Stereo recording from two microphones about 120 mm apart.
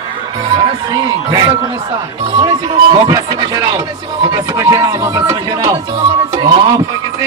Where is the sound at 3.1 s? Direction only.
30° right (ahead or behind).